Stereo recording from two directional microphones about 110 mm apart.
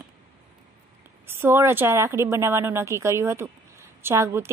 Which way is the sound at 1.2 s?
20° right (ahead or behind).